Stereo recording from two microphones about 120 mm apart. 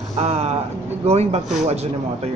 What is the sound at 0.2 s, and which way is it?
Speech, 60° right (ahead or behind).